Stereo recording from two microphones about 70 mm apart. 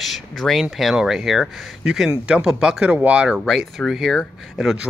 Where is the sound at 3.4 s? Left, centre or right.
Centre.